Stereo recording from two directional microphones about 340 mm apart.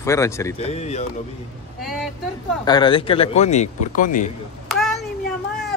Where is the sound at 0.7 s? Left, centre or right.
Centre.